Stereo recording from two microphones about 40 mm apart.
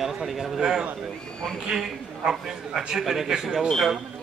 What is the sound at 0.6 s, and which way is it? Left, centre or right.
A man's voice, centre.